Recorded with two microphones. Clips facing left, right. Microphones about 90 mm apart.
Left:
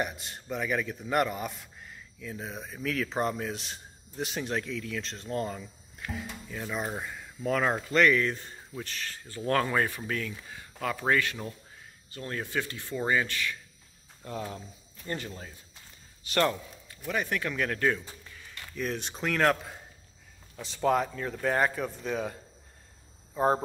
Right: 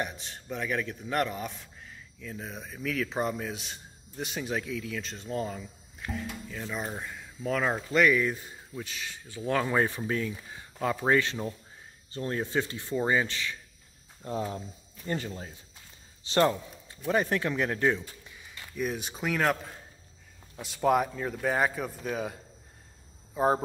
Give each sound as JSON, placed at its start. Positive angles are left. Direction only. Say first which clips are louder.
{"t": 0.0, "sound": "a man's voice", "louder": "left 2 dB", "side_deg": 0}
{"t": 9.8, "sound": "speech", "louder": "right 2 dB", "side_deg": -20}
{"t": 18.5, "sound": "a man's voice", "louder": "right 1 dB", "side_deg": -10}